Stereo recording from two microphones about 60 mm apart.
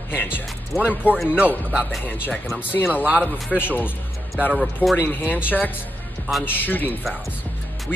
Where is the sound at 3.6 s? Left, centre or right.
Left.